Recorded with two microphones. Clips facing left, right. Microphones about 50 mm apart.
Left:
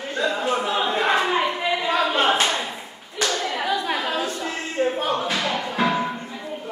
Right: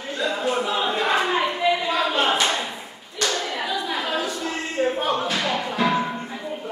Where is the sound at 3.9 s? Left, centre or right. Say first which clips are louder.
Even; left.